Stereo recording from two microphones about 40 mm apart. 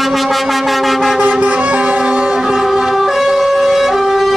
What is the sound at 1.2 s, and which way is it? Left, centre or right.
Vehicle, right.